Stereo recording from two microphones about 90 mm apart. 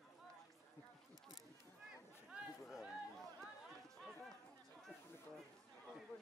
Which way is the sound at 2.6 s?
Centre (ahead or behind).